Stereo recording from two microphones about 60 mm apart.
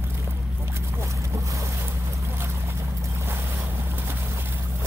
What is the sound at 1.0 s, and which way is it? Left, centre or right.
Boat, right.